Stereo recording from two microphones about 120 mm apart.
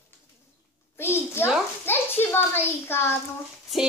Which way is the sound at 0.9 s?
20° left (ahead or behind).